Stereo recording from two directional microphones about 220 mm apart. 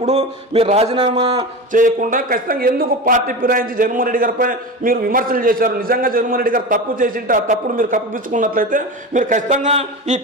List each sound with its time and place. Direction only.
0.0 s a man's voice: 30° right (ahead or behind)
1.7 s a man's voice: 35° right (ahead or behind)